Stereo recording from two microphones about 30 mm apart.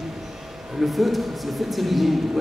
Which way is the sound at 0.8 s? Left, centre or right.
Centre.